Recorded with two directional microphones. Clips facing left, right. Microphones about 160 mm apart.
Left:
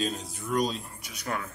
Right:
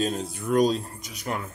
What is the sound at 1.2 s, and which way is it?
Filing, 20° right (ahead or behind).